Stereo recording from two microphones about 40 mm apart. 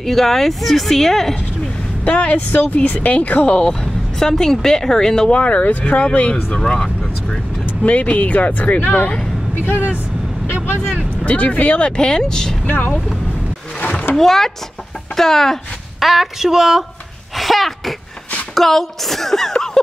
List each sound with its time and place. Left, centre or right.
0.0 s speech: centre
2.0 s speech: left
3.8 s speech: centre
5.3 s speech: left
6.6 s speech: centre
7.8 s speech: left
8.8 s speech: left
11.2 s speech: left
11.8 s speech: left
12.6 s speech: left
14.1 s speech: centre
16.0 s speech: centre
17.4 s a sound: centre
18.5 s speech: centre